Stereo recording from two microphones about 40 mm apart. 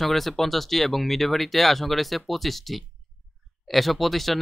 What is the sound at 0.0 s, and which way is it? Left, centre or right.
Speech, centre.